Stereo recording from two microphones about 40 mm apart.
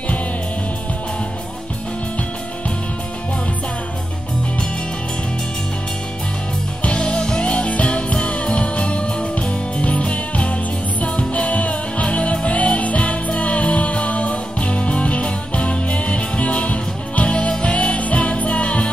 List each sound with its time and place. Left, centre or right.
6.8 s music: left